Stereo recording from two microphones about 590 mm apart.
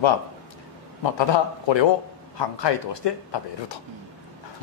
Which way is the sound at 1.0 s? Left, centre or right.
Left.